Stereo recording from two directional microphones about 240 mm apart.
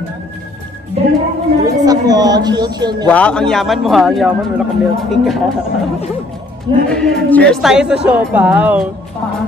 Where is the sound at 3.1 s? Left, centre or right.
Centre.